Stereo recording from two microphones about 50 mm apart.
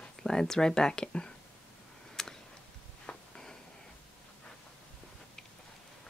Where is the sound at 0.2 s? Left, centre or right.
Centre.